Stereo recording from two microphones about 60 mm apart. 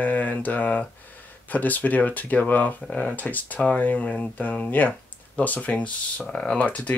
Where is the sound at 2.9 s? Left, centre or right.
Centre.